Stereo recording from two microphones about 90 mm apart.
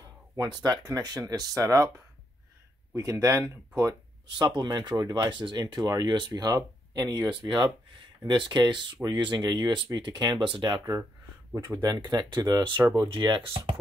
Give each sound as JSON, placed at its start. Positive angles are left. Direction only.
{"t": 0.4, "sound": "speech", "side_deg": -50}
{"t": 3.0, "sound": "speech", "side_deg": -40}
{"t": 4.4, "sound": "speech", "side_deg": -50}
{"t": 11.5, "sound": "speech", "side_deg": -30}
{"t": 11.8, "sound": "speech", "side_deg": -50}
{"t": 13.1, "sound": "speech", "side_deg": -65}